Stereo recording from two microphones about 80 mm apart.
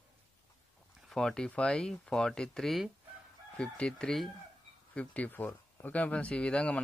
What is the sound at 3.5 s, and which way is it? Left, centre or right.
Speech, centre.